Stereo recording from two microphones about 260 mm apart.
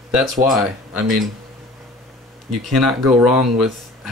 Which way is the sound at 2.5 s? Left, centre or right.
Centre.